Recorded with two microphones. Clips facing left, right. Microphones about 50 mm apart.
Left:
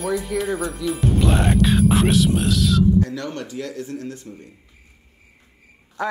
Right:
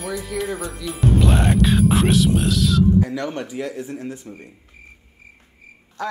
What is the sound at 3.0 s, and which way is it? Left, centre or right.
Speech, centre.